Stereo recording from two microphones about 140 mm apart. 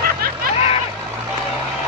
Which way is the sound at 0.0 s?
90° right.